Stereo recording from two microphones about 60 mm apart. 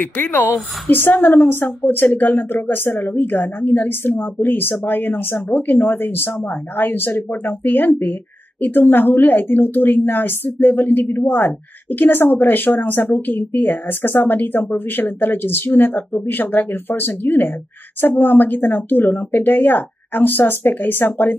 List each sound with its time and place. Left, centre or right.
0.0 s a woman's voice: left